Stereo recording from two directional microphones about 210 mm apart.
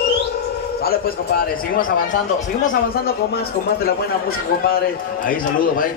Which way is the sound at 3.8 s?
45° left (ahead or behind).